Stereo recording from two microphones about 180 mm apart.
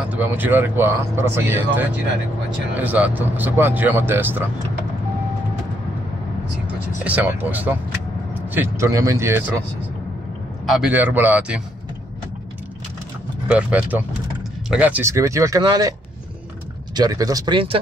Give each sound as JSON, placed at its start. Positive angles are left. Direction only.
{"t": 0.1, "sound": "speech", "side_deg": -10}
{"t": 2.8, "sound": "speech", "side_deg": -10}
{"t": 7.1, "sound": "speech", "side_deg": -10}
{"t": 10.7, "sound": "speech", "side_deg": -5}
{"t": 13.5, "sound": "speech", "side_deg": -5}
{"t": 16.9, "sound": "speech", "side_deg": -20}